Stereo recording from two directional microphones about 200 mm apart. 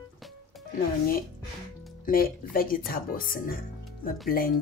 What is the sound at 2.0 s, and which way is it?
Speech, 45° left (ahead or behind).